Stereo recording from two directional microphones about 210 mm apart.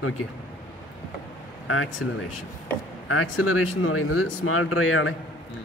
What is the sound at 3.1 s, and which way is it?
Speech, 80° left.